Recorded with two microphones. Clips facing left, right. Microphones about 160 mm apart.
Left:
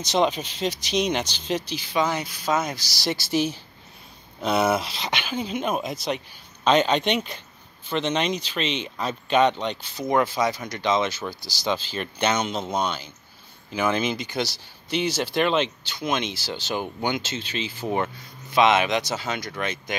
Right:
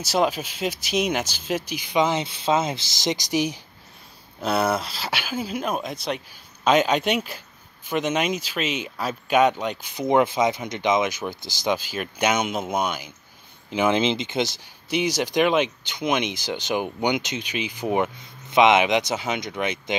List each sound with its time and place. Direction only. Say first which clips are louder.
0.0 s speech: even; 5° right (ahead or behind)
4.4 s speech: left 1 dB; centre (ahead or behind); by 20.0 s 15° right (ahead or behind)